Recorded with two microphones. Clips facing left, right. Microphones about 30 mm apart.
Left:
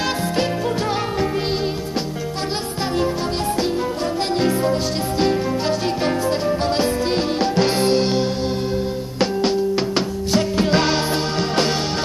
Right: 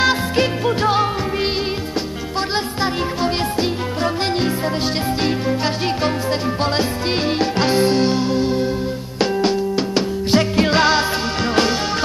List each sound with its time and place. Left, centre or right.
0.0 s music: right
3.6 s music: right
5.9 s music: right
7.7 s music: centre
10.3 s music: right